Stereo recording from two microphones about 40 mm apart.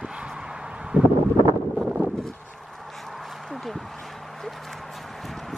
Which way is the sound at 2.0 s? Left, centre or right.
Right.